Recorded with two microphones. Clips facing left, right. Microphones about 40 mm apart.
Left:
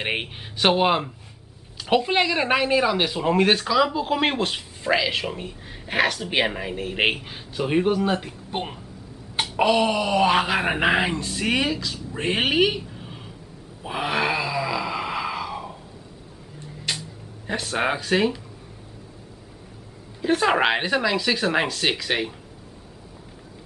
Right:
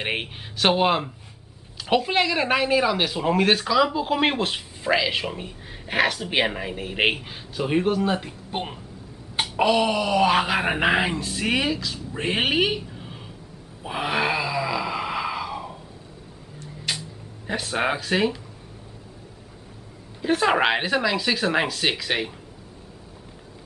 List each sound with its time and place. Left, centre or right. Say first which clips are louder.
0.0 s speech: left 1 dB; centre
13.8 s wail: even; centre
16.9 s a sound: even; centre
17.5 s speech: even; centre
20.2 s speech: even; centre